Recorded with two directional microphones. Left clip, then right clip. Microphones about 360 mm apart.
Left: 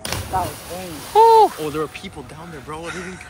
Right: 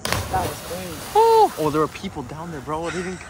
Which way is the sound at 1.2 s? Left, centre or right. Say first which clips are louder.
Left 3 dB; centre.